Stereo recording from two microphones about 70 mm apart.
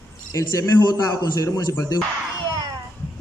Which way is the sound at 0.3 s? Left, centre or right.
Left.